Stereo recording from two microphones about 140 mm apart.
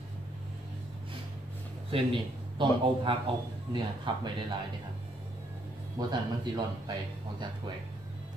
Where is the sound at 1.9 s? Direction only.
40° right (ahead or behind).